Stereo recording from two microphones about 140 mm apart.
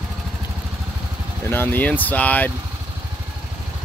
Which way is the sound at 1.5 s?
15° left (ahead or behind).